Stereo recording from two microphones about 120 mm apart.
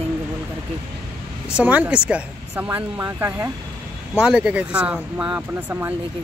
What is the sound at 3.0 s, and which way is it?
Speech, 20° right (ahead or behind).